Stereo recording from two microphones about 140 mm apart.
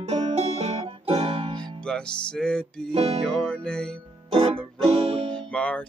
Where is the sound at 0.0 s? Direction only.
45° right (ahead or behind).